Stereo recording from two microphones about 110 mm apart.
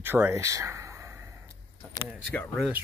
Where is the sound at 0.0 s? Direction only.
20° right (ahead or behind).